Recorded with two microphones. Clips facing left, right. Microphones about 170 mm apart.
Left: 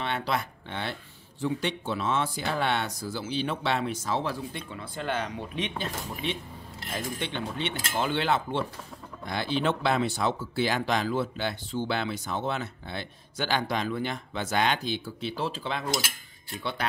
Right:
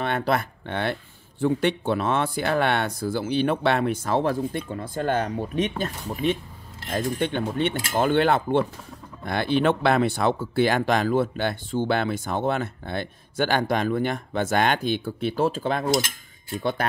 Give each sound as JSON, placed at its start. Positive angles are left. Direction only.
{"t": 0.0, "sound": "speech", "side_deg": -50}